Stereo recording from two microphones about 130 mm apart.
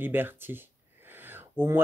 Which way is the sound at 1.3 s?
15° right (ahead or behind).